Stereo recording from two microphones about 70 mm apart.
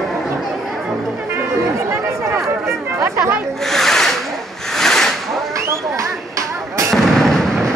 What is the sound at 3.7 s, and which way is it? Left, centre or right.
Rub, centre.